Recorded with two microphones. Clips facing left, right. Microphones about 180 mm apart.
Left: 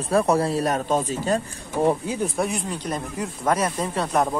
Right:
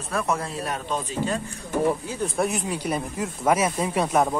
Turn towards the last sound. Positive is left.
turn(degrees=-10)  # may be behind; listen again after turning